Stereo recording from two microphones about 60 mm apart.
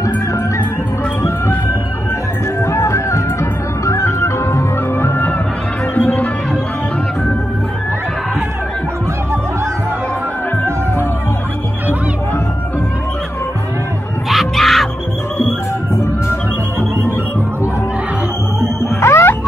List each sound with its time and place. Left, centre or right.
2.6 s music: left
3.8 s organ: left
4.5 s music: left
14.3 s music: centre
18.8 s music: left